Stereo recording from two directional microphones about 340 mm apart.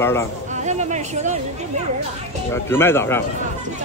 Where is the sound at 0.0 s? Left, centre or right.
Centre.